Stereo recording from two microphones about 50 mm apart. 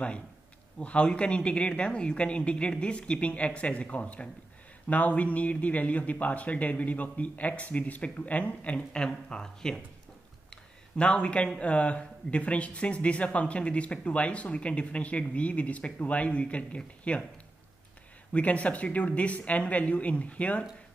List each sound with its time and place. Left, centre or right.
0.7 s speech: left
18.3 s speech: left